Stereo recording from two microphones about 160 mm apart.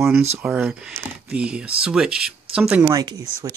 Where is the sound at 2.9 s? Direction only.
25° right (ahead or behind).